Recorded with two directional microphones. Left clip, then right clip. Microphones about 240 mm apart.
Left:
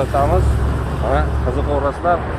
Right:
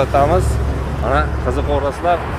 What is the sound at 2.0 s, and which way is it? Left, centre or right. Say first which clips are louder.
Speech: right 1 dB; right.